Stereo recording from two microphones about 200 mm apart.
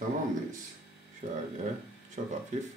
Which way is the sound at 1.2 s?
40° right (ahead or behind).